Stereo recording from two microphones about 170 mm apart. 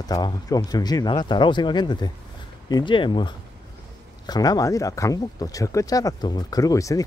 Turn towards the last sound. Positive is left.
turn(degrees=20)  # may be behind; listen again after turning